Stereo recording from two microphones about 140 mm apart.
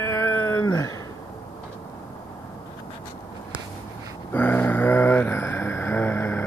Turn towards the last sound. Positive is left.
turn(degrees=15)  # may be behind; listen again after turning